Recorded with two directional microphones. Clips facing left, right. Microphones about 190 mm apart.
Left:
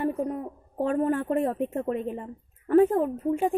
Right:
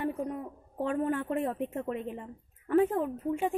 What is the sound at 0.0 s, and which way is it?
A woman's voice, 40° left (ahead or behind).